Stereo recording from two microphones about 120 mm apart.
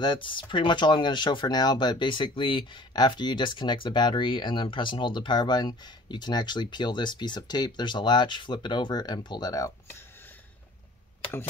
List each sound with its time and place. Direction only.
0.0 s speech: 40° left (ahead or behind)